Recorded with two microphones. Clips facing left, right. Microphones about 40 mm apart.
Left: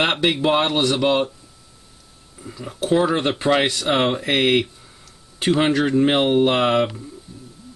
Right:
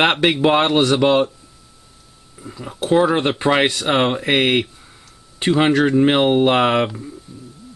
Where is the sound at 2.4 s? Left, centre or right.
Centre.